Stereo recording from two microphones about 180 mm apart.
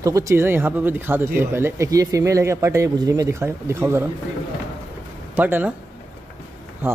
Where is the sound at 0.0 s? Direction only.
15° right (ahead or behind).